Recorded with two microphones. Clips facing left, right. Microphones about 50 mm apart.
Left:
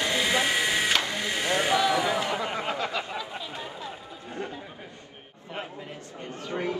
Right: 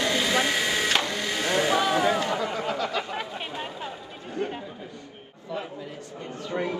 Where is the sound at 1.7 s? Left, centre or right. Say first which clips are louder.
Right 1 dB; right.